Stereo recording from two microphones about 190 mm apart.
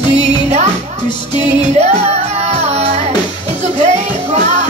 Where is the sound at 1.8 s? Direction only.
35° right (ahead or behind).